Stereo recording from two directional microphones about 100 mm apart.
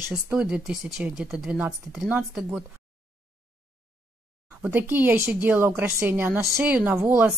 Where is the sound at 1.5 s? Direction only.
15° right (ahead or behind).